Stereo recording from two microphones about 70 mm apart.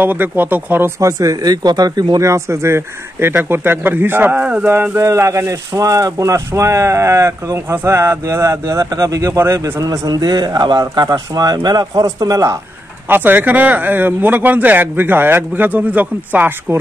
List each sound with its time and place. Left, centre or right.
0.0 s speech: right
0.9 s speech: right
2.1 s speech: right
4.9 s speech: right
9.4 s speech: right
9.8 s speech: right
11.1 s speech: right
11.8 s speech: right
13.1 s speech: right